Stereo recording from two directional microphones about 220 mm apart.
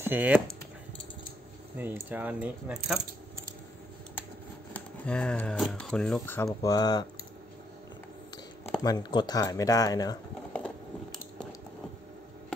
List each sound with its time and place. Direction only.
0.0 s speech: 10° right (ahead or behind)
2.0 s speech: 5° right (ahead or behind)
4.7 s speech: 5° left (ahead or behind)
8.8 s speech: 20° left (ahead or behind)
10.5 s a sound: 5° left (ahead or behind)